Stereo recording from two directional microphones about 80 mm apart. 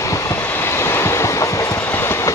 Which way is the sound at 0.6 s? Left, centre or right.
Left.